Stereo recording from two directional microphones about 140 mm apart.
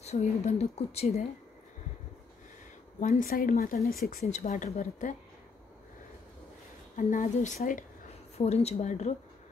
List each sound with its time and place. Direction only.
0.0 s speech: 50° left (ahead or behind)
3.0 s speech: 70° left (ahead or behind); by 3.9 s 85° left
4.2 s a woman's voice: 60° left (ahead or behind)
7.0 s speech: 70° left (ahead or behind)
8.4 s speech: 50° left (ahead or behind)